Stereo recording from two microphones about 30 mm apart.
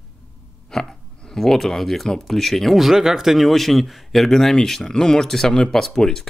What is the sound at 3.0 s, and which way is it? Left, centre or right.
Speech, centre.